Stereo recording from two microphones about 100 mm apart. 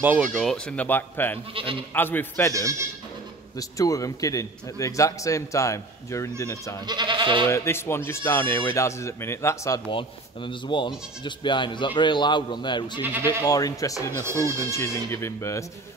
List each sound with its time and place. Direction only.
0.2 s speech: centre (ahead or behind)
0.7 s a man's voice: 15° left (ahead or behind)
1.5 s speech: 65° right (ahead or behind)
2.0 s speech: 20° left (ahead or behind)
3.5 s a man's voice: 35° left (ahead or behind)
6.9 s goat: 45° right (ahead or behind)
7.4 s speech: 25° left (ahead or behind)
9.8 s speech: 55° left (ahead or behind)
13.0 s speech: 20° right (ahead or behind)
13.4 s a man's voice: 35° left (ahead or behind)